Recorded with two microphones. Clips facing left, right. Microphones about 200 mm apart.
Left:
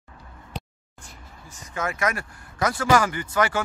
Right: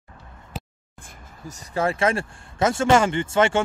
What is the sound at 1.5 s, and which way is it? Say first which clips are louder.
Speech: right 6 dB; 35° right (ahead or behind).